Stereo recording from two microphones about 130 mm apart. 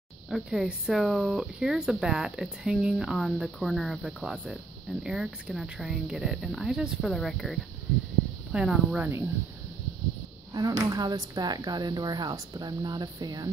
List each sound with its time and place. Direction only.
0.3 s speech: 5° right (ahead or behind)
10.5 s speech: 30° right (ahead or behind)